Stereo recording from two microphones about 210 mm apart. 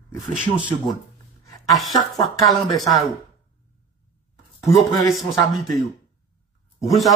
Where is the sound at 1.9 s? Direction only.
15° left (ahead or behind).